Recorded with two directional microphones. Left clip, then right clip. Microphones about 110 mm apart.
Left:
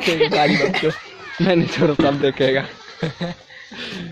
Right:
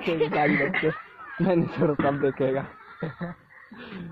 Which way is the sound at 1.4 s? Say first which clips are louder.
Left 7 dB; 25° right (ahead or behind).